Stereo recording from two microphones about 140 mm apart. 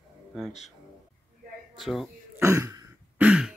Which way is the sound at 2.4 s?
20° right (ahead or behind).